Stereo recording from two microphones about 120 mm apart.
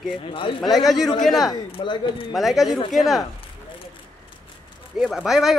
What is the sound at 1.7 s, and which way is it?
Speech, 45° left (ahead or behind).